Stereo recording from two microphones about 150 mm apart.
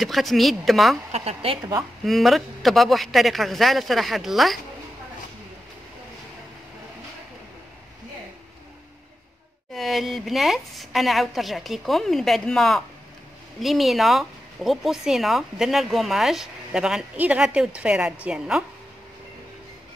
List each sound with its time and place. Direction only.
0.0 s speech: centre (ahead or behind)
1.1 s a woman's voice: 40° right (ahead or behind)
2.0 s speech: centre (ahead or behind)
9.8 s speech: centre (ahead or behind)